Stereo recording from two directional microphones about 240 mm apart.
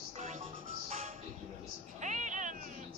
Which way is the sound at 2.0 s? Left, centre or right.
Right.